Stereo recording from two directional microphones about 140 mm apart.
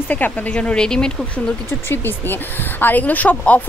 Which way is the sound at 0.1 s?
10° left (ahead or behind).